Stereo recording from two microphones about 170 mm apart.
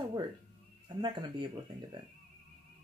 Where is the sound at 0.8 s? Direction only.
25° right (ahead or behind).